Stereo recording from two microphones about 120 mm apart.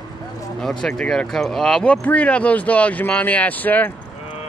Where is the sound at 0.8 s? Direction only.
5° left (ahead or behind).